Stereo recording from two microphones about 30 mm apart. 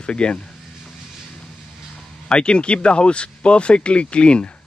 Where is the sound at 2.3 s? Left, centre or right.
Left.